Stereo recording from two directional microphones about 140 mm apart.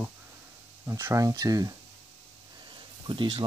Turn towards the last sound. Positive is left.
turn(degrees=-35)  # may be behind; listen again after turning